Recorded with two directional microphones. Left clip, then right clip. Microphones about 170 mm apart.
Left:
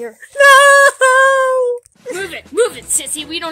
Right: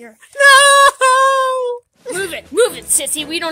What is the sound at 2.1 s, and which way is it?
A woman's voice, 70° right (ahead or behind).